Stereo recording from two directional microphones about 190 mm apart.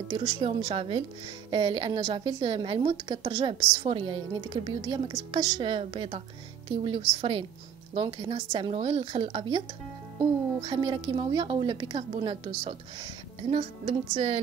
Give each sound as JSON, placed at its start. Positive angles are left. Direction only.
{"t": 0.1, "sound": "a woman's voice", "side_deg": -25}
{"t": 10.6, "sound": "a woman's voice", "side_deg": -25}